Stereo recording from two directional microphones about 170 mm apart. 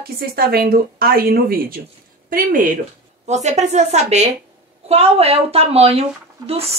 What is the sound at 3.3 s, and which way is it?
Speech, 40° right (ahead or behind).